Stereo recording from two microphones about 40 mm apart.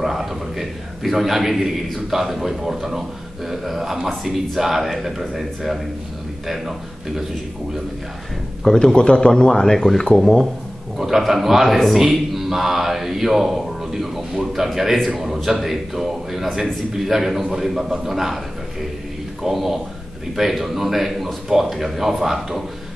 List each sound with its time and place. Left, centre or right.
0.0 s a man's voice: centre
8.6 s speech: centre
11.0 s a man's voice: centre
19.5 s a man's voice: centre